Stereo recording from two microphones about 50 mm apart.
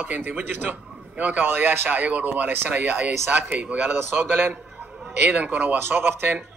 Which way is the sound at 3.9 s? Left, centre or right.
Right.